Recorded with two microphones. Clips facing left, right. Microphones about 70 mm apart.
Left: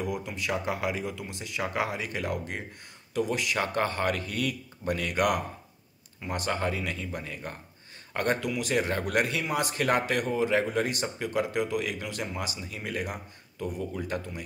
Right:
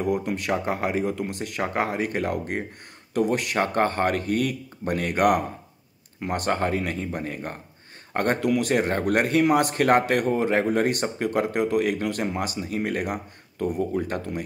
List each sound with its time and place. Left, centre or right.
0.0 s a man's voice: right